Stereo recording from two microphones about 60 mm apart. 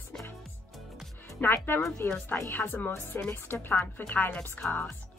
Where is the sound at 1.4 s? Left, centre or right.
Left.